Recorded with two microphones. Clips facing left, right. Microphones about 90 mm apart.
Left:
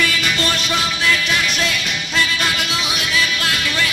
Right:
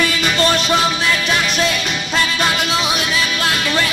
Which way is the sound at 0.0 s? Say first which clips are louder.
Right 3 dB; 30° right (ahead or behind).